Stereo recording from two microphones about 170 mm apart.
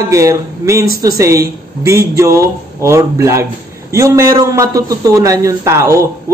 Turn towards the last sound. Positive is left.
turn(degrees=-15)  # may be behind; listen again after turning